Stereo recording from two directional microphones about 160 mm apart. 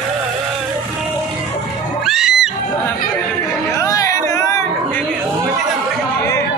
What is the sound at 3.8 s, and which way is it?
Chatter, 20° left (ahead or behind).